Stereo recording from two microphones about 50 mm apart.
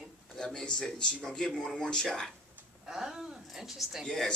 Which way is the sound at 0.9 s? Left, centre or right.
Centre.